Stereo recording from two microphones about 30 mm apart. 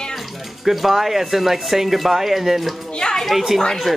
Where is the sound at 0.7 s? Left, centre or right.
Centre.